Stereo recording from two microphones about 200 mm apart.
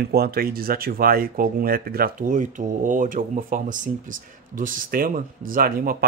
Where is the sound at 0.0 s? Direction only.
50° right (ahead or behind).